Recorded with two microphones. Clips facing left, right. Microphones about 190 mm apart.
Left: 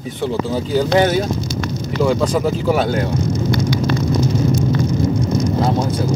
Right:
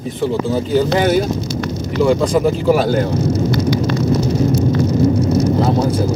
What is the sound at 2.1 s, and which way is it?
Speech, 5° right (ahead or behind).